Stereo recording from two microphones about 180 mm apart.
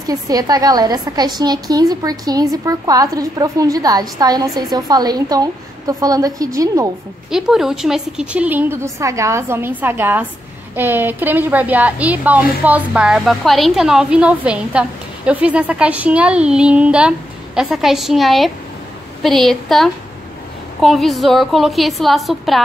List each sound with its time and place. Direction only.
0.0 s a woman's voice: 20° right (ahead or behind)
7.2 s a woman's voice: 5° right (ahead or behind)